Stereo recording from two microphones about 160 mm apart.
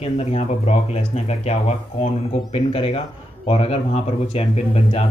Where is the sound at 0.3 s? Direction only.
40° left (ahead or behind).